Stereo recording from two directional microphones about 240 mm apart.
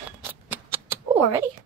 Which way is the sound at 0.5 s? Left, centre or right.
Centre.